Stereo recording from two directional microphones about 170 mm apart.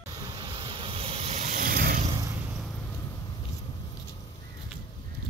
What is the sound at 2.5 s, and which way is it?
Vehicle, centre (ahead or behind).